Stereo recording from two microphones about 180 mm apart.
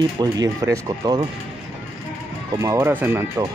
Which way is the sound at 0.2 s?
20° right (ahead or behind).